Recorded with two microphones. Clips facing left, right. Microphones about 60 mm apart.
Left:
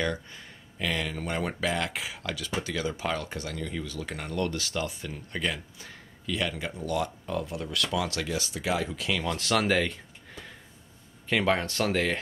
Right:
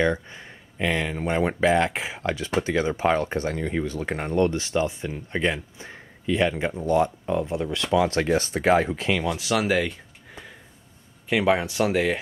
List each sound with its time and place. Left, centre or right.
0.0 s speech: right
9.2 s speech: centre
11.2 s speech: centre